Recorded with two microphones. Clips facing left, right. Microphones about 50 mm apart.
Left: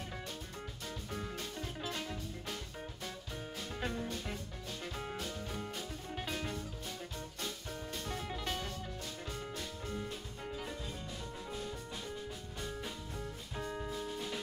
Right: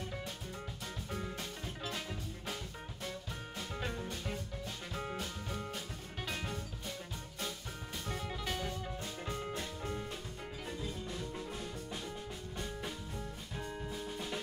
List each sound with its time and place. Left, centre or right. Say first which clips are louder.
1.1 s music: even; centre
3.5 s music: left 1 dB; centre
8.1 s music: right 1 dB; centre
9.0 s music: right 3 dB; centre
9.5 s music: right 3 dB; right
13.8 s music: left 1 dB; centre